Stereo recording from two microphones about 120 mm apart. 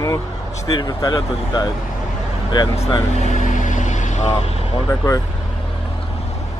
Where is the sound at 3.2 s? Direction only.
85° left; by 4.8 s 55° left (ahead or behind).